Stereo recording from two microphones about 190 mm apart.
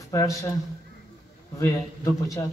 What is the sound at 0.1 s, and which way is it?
Speech, 15° left (ahead or behind).